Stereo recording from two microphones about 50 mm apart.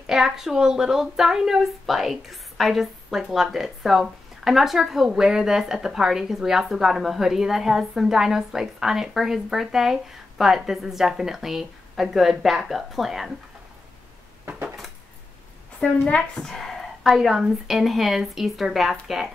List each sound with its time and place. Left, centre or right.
0.0 s a woman's voice: centre
14.4 s a sound: right
15.8 s a woman's voice: left
16.2 s speech: centre
17.1 s a woman's voice: centre